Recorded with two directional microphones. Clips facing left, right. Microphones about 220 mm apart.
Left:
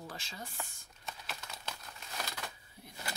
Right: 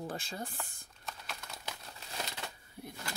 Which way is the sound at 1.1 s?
Centre (ahead or behind).